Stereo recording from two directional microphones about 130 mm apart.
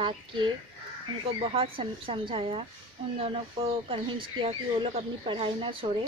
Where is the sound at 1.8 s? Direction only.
45° right (ahead or behind).